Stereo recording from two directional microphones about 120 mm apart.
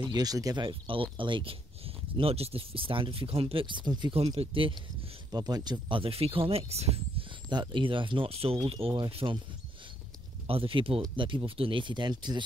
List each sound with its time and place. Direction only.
0.1 s speech: 30° right (ahead or behind)
0.7 s speech: 45° right (ahead or behind)
5.3 s speech: 35° right (ahead or behind); by 7.2 s 60° right (ahead or behind)
7.4 s speech: 40° right (ahead or behind)
10.4 s speech: 50° right (ahead or behind)